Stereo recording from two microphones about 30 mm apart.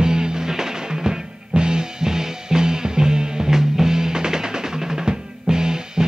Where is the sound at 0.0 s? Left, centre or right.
Right.